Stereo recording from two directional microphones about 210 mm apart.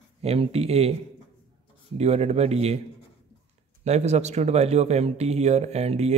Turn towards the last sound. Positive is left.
turn(degrees=-30)  # may be behind; listen again after turning